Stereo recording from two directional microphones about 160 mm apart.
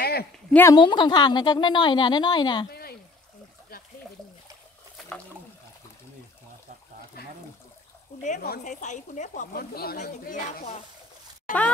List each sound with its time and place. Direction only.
0.0 s a sound: 80° left
0.5 s speech: 10° left (ahead or behind)
0.7 s a woman's voice: 30° left (ahead or behind)
2.7 s a sound: 75° left (ahead or behind)
8.2 s stir: 50° left (ahead or behind)
8.5 s speech: 50° left (ahead or behind); by 9.9 s 70° left (ahead or behind)
10.3 s stir: 55° left (ahead or behind)
11.5 s speech: 55° left (ahead or behind)